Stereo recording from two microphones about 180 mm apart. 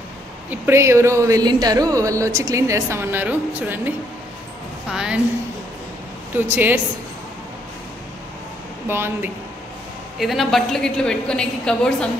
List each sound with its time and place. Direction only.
0.5 s speech: 15° right (ahead or behind)
4.9 s a woman's voice: 5° right (ahead or behind)
6.5 s speech: 10° right (ahead or behind)
8.8 s speech: 10° right (ahead or behind)
10.1 s a woman's voice: centre (ahead or behind)